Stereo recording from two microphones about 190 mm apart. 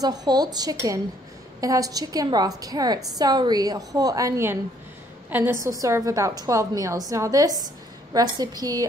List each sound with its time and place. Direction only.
0.0 s a woman's voice: 20° right (ahead or behind)